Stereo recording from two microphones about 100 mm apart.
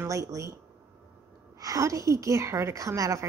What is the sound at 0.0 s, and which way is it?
Speech, 30° right (ahead or behind).